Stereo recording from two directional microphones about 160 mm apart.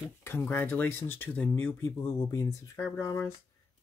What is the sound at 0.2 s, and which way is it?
Speech, 15° left (ahead or behind).